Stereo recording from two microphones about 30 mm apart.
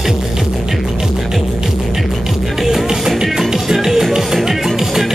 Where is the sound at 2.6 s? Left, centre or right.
Centre.